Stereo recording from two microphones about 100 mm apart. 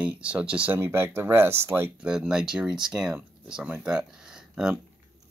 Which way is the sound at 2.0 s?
5° right (ahead or behind).